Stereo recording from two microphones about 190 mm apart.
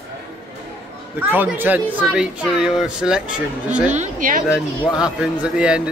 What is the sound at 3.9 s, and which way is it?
Speech, 40° right (ahead or behind).